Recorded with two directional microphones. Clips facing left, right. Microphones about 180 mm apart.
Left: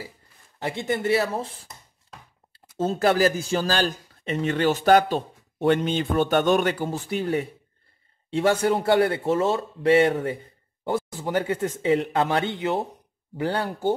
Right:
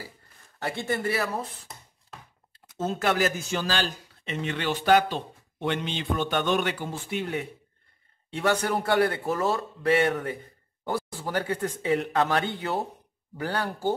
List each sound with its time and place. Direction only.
0.6 s a man's voice: 20° left (ahead or behind)
2.8 s a man's voice: 30° left (ahead or behind)
8.3 s a man's voice: 25° left (ahead or behind)